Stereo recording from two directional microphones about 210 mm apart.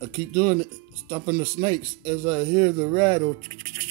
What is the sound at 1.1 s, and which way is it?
Speech, 20° right (ahead or behind).